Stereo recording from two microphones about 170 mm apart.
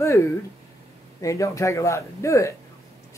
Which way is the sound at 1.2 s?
20° left (ahead or behind).